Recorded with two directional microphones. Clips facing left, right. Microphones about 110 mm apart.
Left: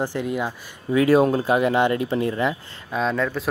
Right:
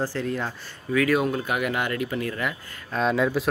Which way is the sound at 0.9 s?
30° left (ahead or behind).